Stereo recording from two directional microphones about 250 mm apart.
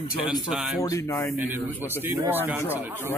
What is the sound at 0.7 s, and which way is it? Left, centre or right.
Speech, centre.